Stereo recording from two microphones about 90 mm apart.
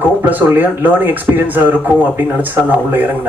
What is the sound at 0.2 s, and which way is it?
Speech, 20° right (ahead or behind).